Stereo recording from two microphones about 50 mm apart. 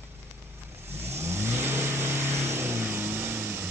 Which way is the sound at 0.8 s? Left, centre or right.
Right.